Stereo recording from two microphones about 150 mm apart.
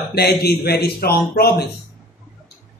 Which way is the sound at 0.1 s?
90° left.